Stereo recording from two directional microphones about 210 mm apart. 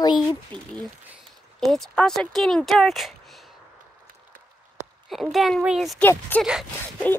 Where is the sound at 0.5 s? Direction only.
20° right (ahead or behind).